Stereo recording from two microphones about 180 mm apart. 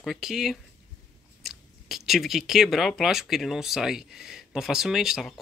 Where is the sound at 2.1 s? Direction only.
Centre (ahead or behind).